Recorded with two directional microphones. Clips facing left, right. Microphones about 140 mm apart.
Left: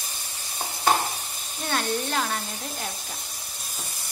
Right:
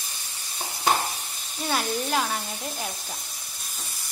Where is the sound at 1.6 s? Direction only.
5° right (ahead or behind).